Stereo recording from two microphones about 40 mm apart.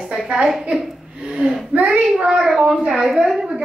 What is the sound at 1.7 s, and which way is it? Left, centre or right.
Speech, right.